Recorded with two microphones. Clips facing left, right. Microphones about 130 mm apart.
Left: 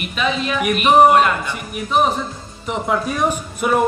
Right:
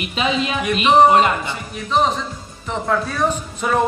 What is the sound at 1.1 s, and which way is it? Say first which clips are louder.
Speech: even; 20° right (ahead or behind).